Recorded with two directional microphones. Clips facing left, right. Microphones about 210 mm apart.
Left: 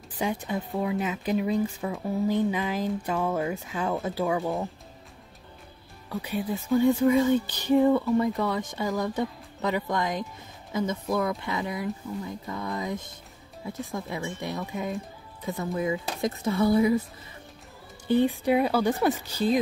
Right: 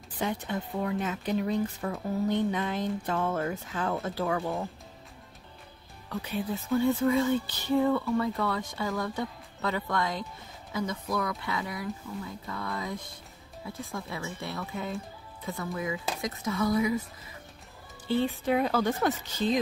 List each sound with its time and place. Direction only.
0.2 s speech: 10° left (ahead or behind)
6.0 s speech: 15° left (ahead or behind); by 16.9 s 30° left (ahead or behind)
18.1 s speech: 15° left (ahead or behind)